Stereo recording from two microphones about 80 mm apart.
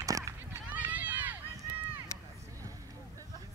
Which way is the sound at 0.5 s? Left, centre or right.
Right.